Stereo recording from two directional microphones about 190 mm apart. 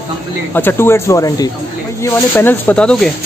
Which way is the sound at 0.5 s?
10° left (ahead or behind).